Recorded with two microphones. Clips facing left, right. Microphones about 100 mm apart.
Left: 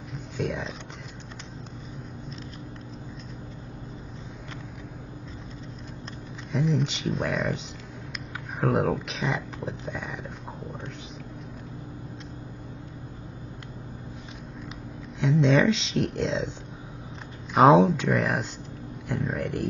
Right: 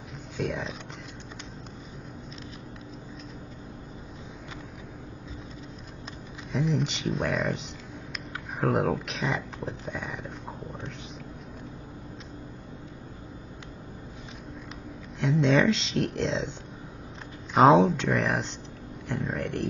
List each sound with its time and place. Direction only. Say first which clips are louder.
0.4 s speech: left 1 dB; centre (ahead or behind)
6.5 s speech: left 2 dB; centre (ahead or behind)
15.1 s speech: left 1 dB; centre (ahead or behind)
17.6 s speech: left 1 dB; centre (ahead or behind)